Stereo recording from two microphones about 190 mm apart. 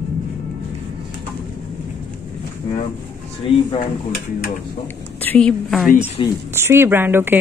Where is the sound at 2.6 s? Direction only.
25° left (ahead or behind).